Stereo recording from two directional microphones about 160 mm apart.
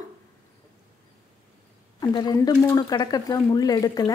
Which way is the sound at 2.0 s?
25° left (ahead or behind).